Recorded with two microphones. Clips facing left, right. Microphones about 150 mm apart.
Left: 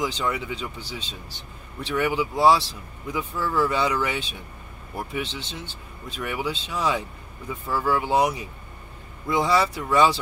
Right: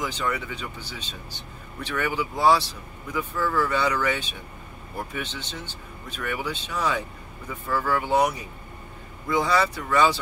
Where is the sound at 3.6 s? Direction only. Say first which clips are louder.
Left 2 dB; 15° left (ahead or behind).